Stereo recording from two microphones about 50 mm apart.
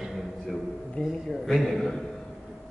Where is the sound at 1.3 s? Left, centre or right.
Centre.